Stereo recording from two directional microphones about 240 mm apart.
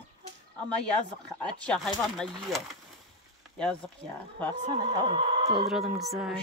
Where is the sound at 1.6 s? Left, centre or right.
Centre.